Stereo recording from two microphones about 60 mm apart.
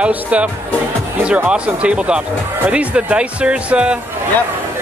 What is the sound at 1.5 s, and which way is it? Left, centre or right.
A man's voice, centre.